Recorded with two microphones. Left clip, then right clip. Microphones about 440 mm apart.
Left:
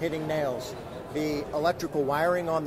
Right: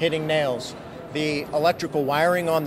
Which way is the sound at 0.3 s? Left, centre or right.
Right.